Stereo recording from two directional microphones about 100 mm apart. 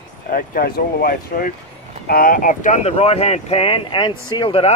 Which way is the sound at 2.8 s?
90° left.